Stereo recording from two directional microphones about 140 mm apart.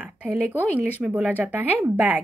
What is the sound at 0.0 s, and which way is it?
A woman's voice, 10° right (ahead or behind).